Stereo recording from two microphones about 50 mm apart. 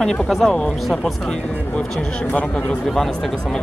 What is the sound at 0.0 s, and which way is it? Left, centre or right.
Speech, centre.